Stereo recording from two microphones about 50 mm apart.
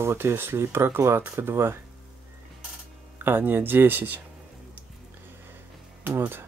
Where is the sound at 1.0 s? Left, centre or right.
Right.